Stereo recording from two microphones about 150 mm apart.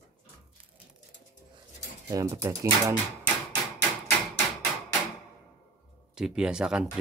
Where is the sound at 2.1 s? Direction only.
20° right (ahead or behind).